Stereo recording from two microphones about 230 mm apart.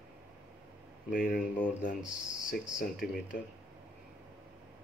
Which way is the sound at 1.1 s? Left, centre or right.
Left.